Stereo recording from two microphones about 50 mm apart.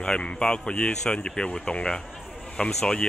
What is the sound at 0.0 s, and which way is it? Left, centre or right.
Speech, left.